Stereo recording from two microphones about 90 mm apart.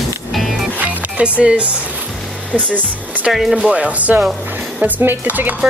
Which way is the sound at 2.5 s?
20° right (ahead or behind).